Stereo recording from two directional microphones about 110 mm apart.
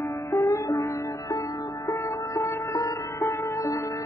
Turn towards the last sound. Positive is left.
turn(degrees=30)  # may be behind; listen again after turning